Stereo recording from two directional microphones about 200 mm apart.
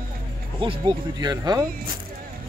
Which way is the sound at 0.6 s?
25° right (ahead or behind).